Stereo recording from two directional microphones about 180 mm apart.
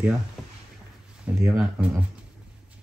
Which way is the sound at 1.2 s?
15° right (ahead or behind).